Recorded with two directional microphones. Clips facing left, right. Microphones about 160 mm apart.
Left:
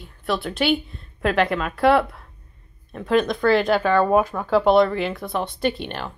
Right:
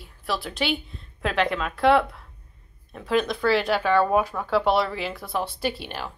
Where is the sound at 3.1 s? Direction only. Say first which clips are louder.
Left 4 dB; 50° left (ahead or behind).